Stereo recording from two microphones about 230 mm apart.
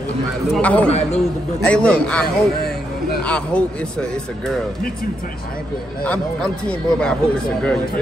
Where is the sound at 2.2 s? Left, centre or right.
Left.